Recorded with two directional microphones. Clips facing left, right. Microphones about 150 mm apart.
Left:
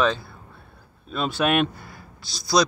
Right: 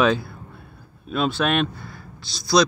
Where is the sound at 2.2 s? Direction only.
45° left (ahead or behind).